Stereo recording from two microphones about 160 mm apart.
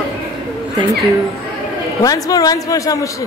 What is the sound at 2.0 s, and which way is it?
Speech, 20° left (ahead or behind).